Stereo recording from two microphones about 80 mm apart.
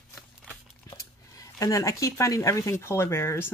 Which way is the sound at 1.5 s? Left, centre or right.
Left.